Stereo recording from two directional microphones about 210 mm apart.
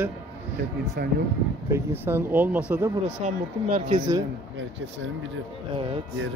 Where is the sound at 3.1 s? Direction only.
35° right (ahead or behind).